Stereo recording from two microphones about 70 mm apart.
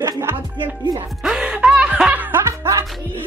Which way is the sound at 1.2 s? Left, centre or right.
Centre.